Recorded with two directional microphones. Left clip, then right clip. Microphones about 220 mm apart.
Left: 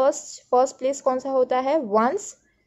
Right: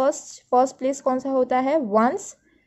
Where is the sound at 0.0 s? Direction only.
35° right (ahead or behind).